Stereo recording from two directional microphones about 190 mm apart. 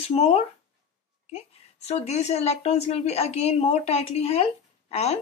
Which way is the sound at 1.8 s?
35° left (ahead or behind).